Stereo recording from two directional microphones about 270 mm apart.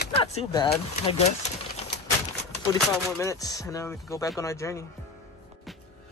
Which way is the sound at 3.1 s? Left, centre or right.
Centre.